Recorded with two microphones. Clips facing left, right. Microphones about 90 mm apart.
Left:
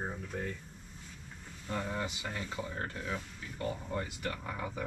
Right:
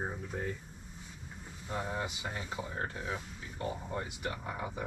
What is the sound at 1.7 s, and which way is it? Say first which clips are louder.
Speech: even; 15° right (ahead or behind).